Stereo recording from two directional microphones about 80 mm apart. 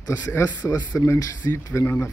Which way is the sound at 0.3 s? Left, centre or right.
Left.